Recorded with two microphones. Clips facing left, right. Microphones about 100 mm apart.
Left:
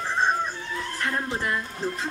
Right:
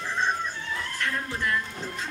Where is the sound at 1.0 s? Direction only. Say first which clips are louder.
Left 3 dB; 30° left (ahead or behind).